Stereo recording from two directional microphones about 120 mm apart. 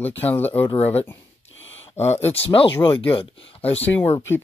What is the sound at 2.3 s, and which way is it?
Speech, 50° left (ahead or behind).